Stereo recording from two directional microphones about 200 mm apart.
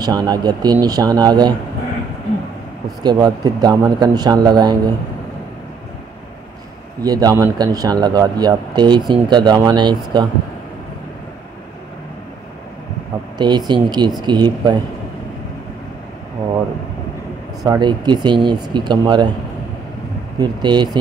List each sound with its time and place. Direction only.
0.0 s speech: 20° right (ahead or behind)
3.0 s speech: 20° right (ahead or behind)
7.0 s speech: 20° right (ahead or behind)
13.4 s speech: 20° right (ahead or behind)
17.6 s speech: 20° right (ahead or behind)
20.3 s speech: 20° right (ahead or behind)